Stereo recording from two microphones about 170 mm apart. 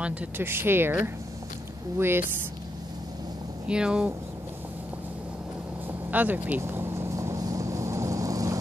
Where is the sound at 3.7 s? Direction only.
5° right (ahead or behind).